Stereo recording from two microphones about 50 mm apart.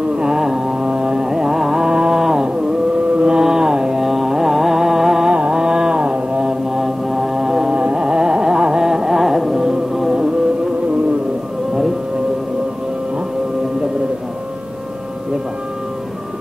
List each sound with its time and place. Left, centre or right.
0.2 s carnatic music: centre
1.9 s mantra: centre
3.2 s carnatic music: centre
5.3 s mantra: centre
7.7 s carnatic music: centre